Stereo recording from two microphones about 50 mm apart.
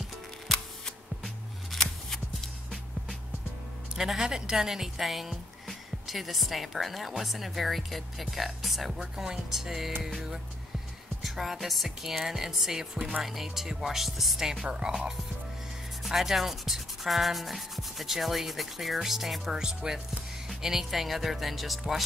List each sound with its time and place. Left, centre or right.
0.5 s shuffling cards: centre
3.9 s speech: centre
12.9 s speech: right
13.2 s speech: centre